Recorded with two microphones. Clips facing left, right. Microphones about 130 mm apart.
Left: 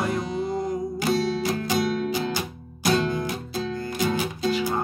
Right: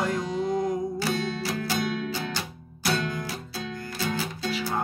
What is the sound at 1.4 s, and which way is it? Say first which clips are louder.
Music: left 4 dB; 20° left (ahead or behind).